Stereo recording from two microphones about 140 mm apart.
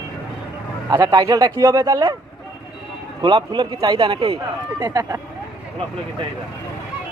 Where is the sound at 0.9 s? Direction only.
30° right (ahead or behind).